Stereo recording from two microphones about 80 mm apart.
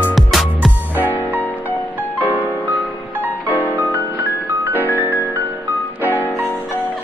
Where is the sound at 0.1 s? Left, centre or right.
Centre.